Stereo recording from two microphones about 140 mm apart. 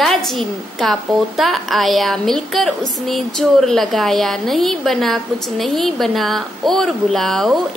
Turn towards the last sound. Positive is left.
turn(degrees=0)  # may be behind; listen again after turning